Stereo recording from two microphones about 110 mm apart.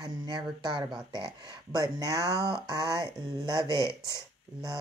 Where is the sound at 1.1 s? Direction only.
40° right (ahead or behind).